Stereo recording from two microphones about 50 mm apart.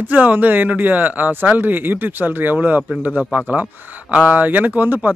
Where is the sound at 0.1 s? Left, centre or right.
Right.